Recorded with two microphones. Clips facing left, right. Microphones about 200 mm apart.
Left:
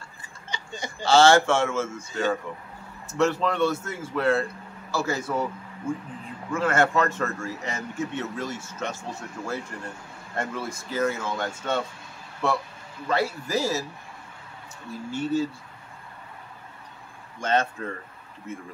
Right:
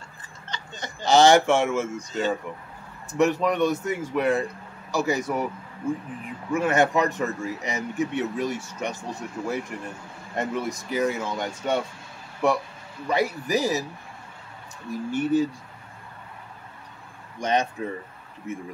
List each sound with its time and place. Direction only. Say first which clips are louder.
0.2 s a sound: even; 10° left (ahead or behind)
1.0 s a man's voice: right 1 dB; 15° right (ahead or behind)
14.9 s a man's voice: right 4 dB; 15° right (ahead or behind)
17.4 s a man's voice: right 1 dB; 15° right (ahead or behind)